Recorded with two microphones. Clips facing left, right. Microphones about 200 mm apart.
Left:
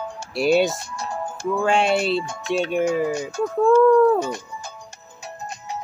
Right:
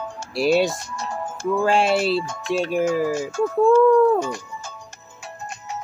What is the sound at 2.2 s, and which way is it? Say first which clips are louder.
Speech: even; 10° left (ahead or behind).